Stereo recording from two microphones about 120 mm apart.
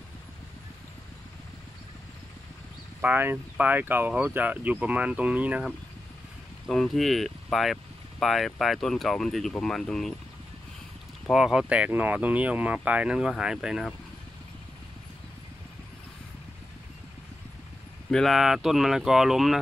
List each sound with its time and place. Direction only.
3.0 s speech: 15° right (ahead or behind)
6.7 s speech: centre (ahead or behind)
11.2 s speech: 5° right (ahead or behind)
18.1 s speech: centre (ahead or behind)